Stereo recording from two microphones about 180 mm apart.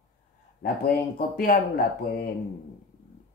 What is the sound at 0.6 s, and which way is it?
Speech, 55° left (ahead or behind).